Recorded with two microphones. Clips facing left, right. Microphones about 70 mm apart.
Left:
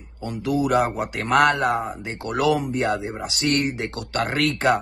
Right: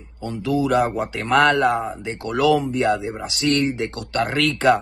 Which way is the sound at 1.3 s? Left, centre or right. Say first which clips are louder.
Right 2 dB; left.